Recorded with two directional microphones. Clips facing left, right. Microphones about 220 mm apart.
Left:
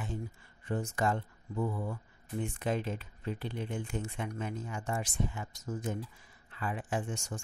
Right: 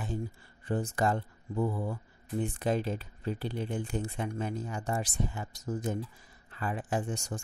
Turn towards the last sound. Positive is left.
turn(degrees=-35)  # may be behind; listen again after turning